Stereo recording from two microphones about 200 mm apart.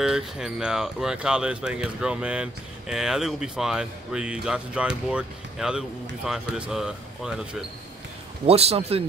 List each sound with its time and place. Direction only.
0.0 s speech: 5° right (ahead or behind)
8.5 s a man's voice: 30° right (ahead or behind)